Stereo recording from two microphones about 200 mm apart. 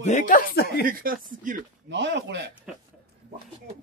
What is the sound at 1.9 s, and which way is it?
Speech, 65° right (ahead or behind).